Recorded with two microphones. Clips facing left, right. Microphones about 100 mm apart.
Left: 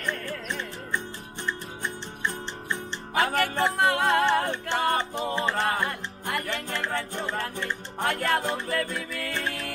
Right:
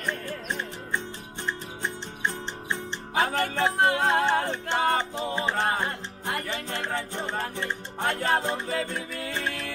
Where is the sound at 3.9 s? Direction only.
55° left (ahead or behind).